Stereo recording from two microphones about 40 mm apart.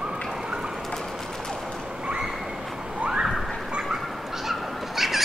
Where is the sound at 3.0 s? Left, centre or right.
Right.